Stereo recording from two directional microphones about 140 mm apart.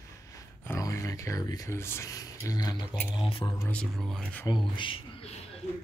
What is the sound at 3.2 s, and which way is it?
Speech, 40° left (ahead or behind).